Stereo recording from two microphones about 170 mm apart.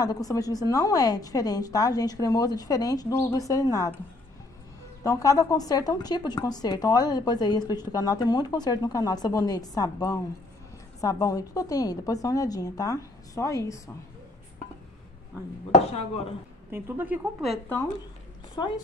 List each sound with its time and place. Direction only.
0.0 s a woman's voice: 20° left (ahead or behind)
5.0 s a woman's voice: 20° left (ahead or behind)
16.7 s a woman's voice: 15° right (ahead or behind)